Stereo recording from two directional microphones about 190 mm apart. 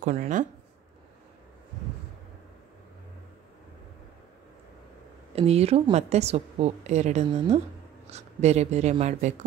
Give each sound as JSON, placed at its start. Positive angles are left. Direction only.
{"t": 0.0, "sound": "a woman's voice", "side_deg": -45}
{"t": 5.3, "sound": "a woman's voice", "side_deg": -35}